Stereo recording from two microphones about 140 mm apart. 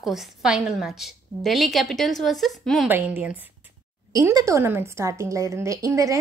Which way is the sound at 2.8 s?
15° right (ahead or behind).